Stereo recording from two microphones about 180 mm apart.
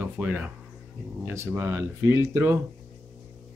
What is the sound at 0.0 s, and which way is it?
Speech, 10° right (ahead or behind).